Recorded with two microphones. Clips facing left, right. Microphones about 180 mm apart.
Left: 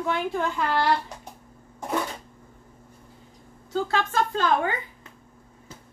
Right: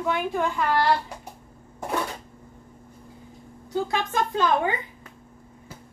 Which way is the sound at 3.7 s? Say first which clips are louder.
Even; 15° right (ahead or behind).